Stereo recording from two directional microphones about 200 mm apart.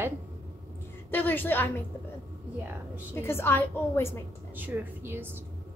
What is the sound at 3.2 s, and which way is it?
Speech, 10° left (ahead or behind).